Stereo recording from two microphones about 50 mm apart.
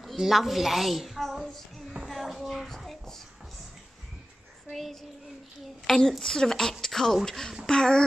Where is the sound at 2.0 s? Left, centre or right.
Centre.